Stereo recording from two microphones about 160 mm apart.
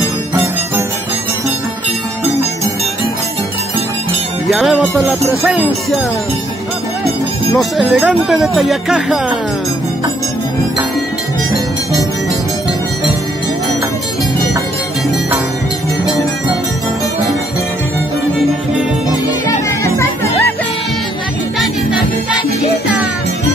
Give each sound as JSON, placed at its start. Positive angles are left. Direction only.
{"t": 4.5, "sound": "music", "side_deg": 0}
{"t": 7.5, "sound": "speech", "side_deg": 0}
{"t": 19.2, "sound": "music", "side_deg": 20}